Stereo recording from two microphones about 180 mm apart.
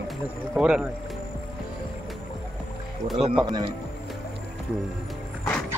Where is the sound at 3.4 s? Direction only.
25° right (ahead or behind).